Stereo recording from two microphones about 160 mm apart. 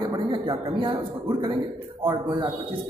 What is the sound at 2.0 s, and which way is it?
Speech, 25° right (ahead or behind).